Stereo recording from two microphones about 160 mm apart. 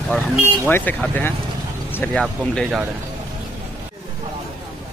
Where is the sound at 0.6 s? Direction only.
10° left (ahead or behind).